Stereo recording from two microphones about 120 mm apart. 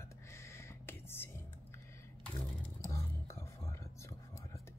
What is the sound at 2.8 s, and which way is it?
Whispering, 25° left (ahead or behind).